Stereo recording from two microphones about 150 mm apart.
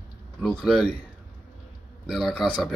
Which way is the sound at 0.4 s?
Centre (ahead or behind).